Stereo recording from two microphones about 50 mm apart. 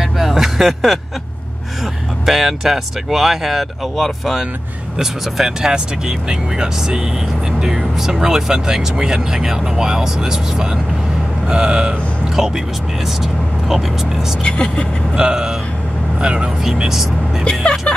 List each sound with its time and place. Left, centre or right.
0.0 s a sound: centre
2.2 s speech: centre
5.4 s speech: centre
14.4 s speech: centre
15.1 s speech: centre
17.5 s speech: centre